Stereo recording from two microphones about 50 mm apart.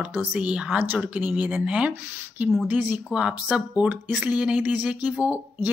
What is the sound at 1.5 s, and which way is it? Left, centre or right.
A woman's voice, right.